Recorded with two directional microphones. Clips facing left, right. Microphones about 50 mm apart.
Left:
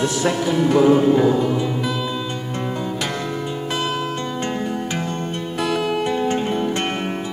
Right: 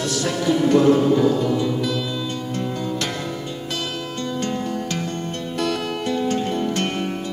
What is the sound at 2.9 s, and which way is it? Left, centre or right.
Music, centre.